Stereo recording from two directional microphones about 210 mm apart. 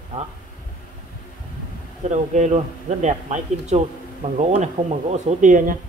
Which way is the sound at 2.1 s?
35° right (ahead or behind).